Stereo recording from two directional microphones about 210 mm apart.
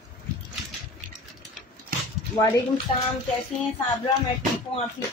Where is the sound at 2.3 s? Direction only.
15° left (ahead or behind).